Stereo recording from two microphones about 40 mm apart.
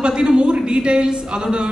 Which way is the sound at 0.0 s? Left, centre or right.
Right.